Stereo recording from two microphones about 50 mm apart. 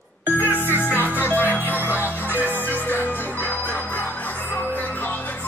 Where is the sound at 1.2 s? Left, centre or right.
Left.